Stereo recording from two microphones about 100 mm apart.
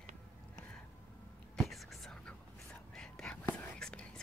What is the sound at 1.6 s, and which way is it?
Whispering, centre (ahead or behind).